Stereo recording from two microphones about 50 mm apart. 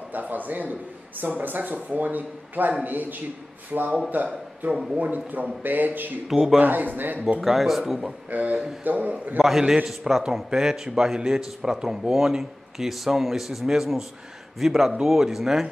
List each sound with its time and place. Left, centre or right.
0.1 s a man's voice: right
6.2 s speech: centre
6.6 s speech: right
7.3 s speech: centre
8.3 s speech: right
9.4 s speech: centre